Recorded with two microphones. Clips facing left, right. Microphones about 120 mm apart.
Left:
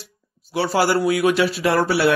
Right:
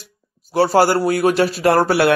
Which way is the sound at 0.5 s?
45° right (ahead or behind).